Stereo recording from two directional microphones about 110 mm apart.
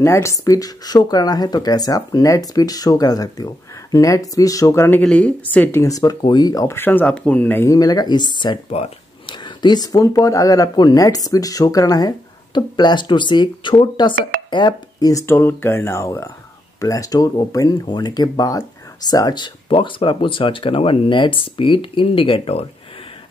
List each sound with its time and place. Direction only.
0.0 s speech: 25° left (ahead or behind)
5.0 s speech: 10° left (ahead or behind); by 6.7 s 35° left (ahead or behind)
6.7 s speech: 20° left (ahead or behind)
7.6 s speech: 30° left (ahead or behind)
8.6 s speech: 70° left (ahead or behind)
9.2 s speech: 45° left (ahead or behind); by 22.7 s 60° left (ahead or behind)